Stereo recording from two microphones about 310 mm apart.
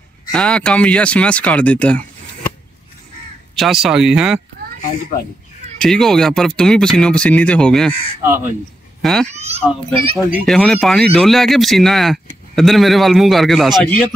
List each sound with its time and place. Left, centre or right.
0.3 s speech: centre
3.5 s speech: centre
5.8 s speech: centre
9.3 s a sound: right
9.6 s speech: centre